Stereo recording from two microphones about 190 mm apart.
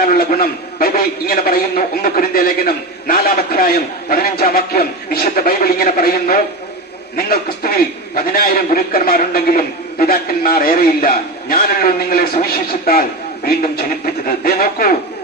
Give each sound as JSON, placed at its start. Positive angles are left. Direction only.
{"t": 0.0, "sound": "a man's voice", "side_deg": 50}